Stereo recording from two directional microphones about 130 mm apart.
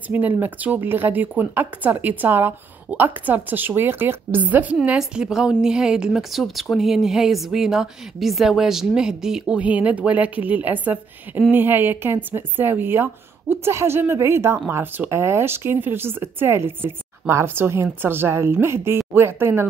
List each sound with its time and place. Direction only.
0.1 s a woman's voice: 10° right (ahead or behind)